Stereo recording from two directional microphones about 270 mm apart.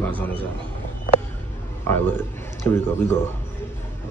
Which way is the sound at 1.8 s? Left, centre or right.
Centre.